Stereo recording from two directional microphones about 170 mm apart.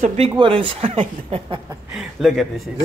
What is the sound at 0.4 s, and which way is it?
Speech, 30° right (ahead or behind).